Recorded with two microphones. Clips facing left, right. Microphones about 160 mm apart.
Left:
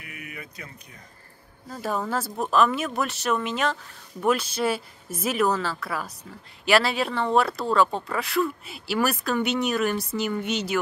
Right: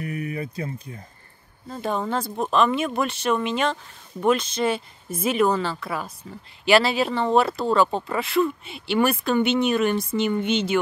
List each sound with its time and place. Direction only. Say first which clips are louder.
0.0 s speech: right 12 dB; 35° right (ahead or behind)
1.8 s speech: right 2 dB; 5° left (ahead or behind)